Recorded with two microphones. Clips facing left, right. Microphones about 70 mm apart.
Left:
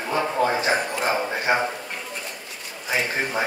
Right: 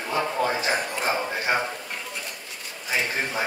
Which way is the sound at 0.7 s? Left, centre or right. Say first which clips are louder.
Left 3 dB; centre.